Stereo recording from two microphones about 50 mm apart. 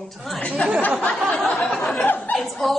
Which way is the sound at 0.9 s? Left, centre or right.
Centre.